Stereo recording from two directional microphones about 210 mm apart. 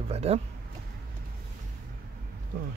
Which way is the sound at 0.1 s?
30° right (ahead or behind).